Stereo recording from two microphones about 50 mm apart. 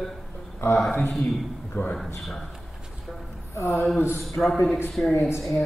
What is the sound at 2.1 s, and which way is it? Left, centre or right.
Speech, centre.